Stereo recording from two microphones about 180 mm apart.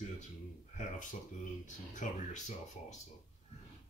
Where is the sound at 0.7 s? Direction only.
45° left (ahead or behind).